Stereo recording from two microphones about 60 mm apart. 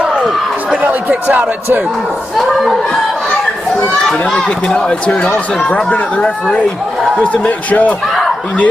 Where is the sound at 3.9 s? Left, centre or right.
Centre.